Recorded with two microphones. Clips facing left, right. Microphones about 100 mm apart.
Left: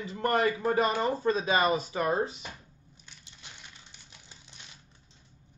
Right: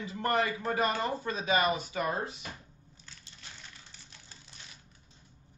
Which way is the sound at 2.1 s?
25° left (ahead or behind).